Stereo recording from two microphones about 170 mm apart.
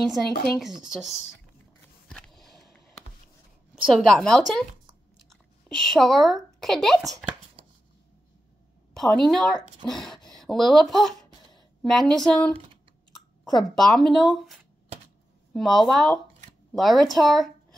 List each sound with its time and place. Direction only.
0.3 s speech: 65° left (ahead or behind)
2.0 s a sound: 5° left (ahead or behind)
3.9 s a woman's voice: centre (ahead or behind)
8.9 s speech: centre (ahead or behind)